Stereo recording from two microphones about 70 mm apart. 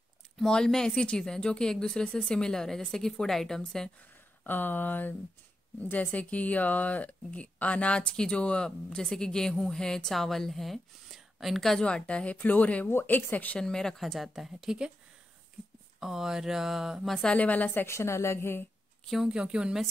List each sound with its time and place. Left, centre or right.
0.4 s a woman's voice: centre
4.5 s a woman's voice: left
13.6 s speech: centre
16.0 s speech: centre
17.1 s a woman's voice: centre
17.4 s speech: left
17.9 s a woman's voice: left
19.2 s a woman's voice: centre